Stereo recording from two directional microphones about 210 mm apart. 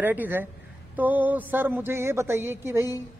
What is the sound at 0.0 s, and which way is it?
A man's voice, 10° right (ahead or behind).